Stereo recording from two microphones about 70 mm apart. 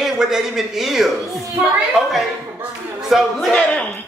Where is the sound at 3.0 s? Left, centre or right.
Centre.